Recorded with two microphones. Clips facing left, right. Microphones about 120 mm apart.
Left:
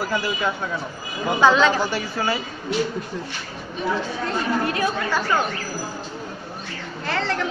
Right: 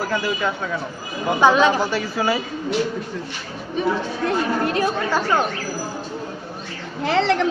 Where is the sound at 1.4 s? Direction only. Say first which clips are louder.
Right 1 dB; 15° right (ahead or behind).